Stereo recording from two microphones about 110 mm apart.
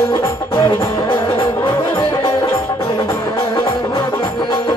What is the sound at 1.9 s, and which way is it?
Music, 25° left (ahead or behind).